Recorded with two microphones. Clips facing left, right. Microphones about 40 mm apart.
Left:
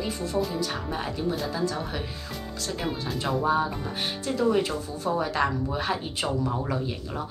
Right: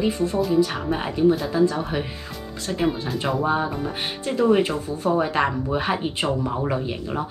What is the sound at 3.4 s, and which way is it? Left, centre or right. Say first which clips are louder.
Speech: right 2 dB; right.